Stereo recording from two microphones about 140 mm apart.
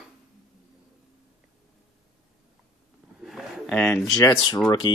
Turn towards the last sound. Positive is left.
turn(degrees=25)  # may be behind; listen again after turning